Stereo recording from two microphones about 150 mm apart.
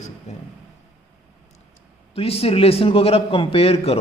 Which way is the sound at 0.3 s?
50° left (ahead or behind).